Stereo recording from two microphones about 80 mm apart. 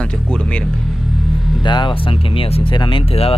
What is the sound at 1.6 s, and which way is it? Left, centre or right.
Speech, left.